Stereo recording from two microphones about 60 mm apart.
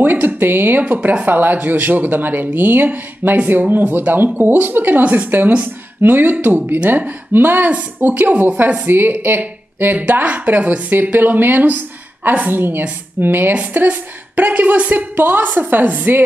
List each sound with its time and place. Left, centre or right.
0.0 s speech: right